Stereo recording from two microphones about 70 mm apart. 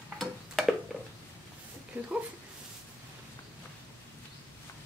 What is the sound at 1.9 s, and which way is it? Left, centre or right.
Speech, right.